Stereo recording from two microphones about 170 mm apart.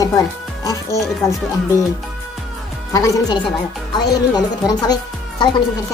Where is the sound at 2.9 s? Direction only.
20° left (ahead or behind).